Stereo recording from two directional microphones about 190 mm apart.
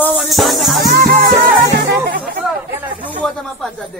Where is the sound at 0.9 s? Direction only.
50° right (ahead or behind).